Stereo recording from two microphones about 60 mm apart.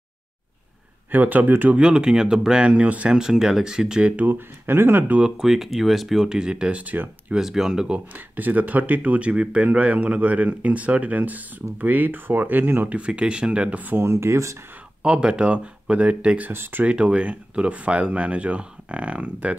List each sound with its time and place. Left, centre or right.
1.1 s speech: right
1.8 s speech: centre
3.2 s speech: centre
4.2 s speech: right
5.4 s speech: centre; by 7.3 s right
7.3 s speech: centre
8.1 s speech: right
12.9 s speech: centre
14.0 s speech: right
15.0 s speech: centre
16.4 s speech: right
16.8 s speech: centre